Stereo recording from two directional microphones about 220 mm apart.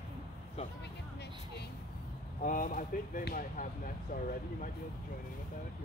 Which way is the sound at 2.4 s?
35° left (ahead or behind).